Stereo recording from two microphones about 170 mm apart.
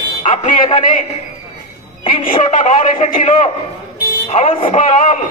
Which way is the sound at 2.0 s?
35° left (ahead or behind).